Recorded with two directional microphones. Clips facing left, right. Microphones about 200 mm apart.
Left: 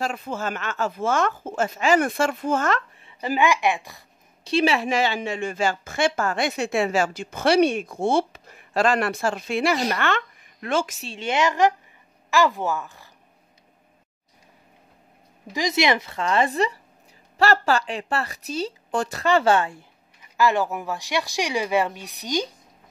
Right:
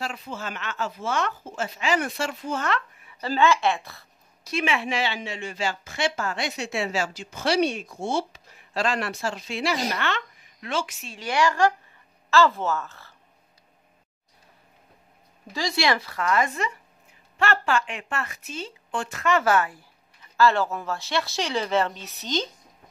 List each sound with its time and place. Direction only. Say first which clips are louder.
0.0 s a woman's voice: left 6 dB; 50° left (ahead or behind)
3.0 s a woman's voice: right 3 dB; 20° left (ahead or behind)
4.5 s a woman's voice: left 5 dB; 35° left (ahead or behind); by 11.0 s 50° left (ahead or behind)
11.0 s speech: left 1 dB; 30° left (ahead or behind)
15.4 s speech: left 3 dB; 20° left (ahead or behind)
20.2 s speech: even; 15° left (ahead or behind)